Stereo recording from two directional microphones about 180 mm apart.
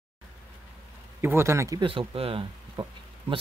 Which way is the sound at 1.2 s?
15° right (ahead or behind).